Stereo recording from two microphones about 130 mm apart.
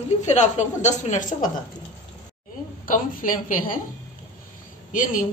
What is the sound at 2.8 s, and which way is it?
Speech, 90° left.